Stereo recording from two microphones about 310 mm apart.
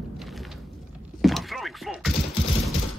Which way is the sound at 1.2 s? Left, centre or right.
Centre.